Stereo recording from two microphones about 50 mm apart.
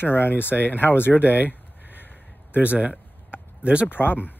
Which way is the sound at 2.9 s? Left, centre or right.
Right.